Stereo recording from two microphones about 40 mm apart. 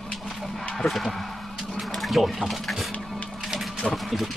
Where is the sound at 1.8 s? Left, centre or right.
Centre.